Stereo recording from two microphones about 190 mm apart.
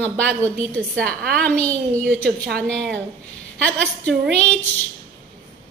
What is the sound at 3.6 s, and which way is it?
Speech, 5° left (ahead or behind).